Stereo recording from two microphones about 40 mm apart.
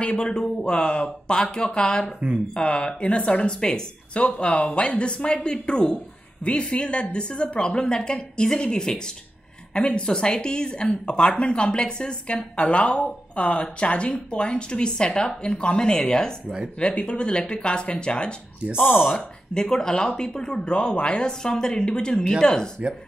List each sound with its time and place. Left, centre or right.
0.0 s speech: left
0.3 s speech: centre
2.1 s speech: right
2.5 s speech: left
4.1 s speech: left
12.5 s speech: left; by 16.3 s centre
16.9 s speech: left